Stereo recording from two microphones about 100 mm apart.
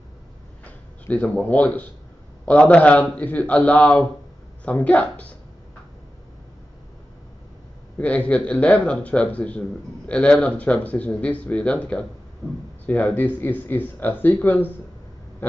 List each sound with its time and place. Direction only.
0.7 s speech: 15° left (ahead or behind)
8.0 s speech: 15° left (ahead or behind)
12.4 s speech: centre (ahead or behind)
12.8 s speech: 15° left (ahead or behind)